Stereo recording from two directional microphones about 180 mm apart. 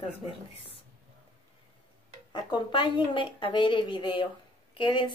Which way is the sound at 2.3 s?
25° left (ahead or behind).